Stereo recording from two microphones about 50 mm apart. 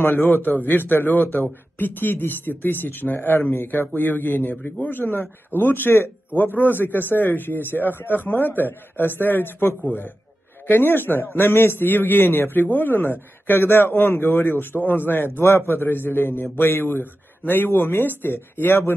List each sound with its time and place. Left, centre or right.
0.1 s a man's voice: left
4.6 s speech: left
4.9 s a man's voice: left